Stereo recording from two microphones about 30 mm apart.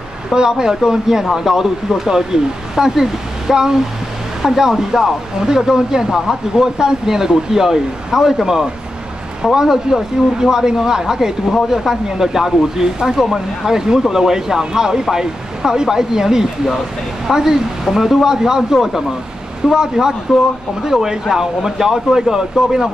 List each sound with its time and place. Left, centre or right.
0.3 s speech: right